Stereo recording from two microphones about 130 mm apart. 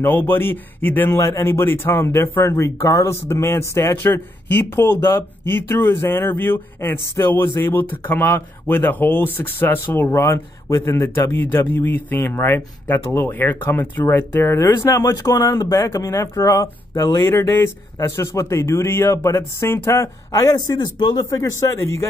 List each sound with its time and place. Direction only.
0.3 s speech: 15° left (ahead or behind)